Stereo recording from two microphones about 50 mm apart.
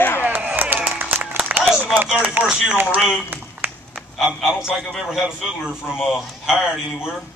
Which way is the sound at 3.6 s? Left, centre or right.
Right.